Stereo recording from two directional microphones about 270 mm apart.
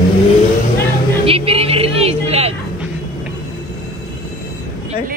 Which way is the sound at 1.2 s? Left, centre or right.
Right.